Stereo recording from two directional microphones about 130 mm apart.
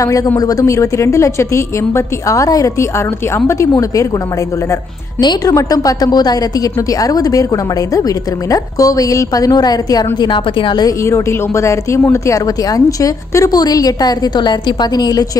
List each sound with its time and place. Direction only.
0.4 s a woman's voice: 25° left (ahead or behind)
5.2 s a woman's voice: 25° left (ahead or behind)
8.5 s a woman's voice: 25° left (ahead or behind)
11.1 s a woman's voice: 20° left (ahead or behind)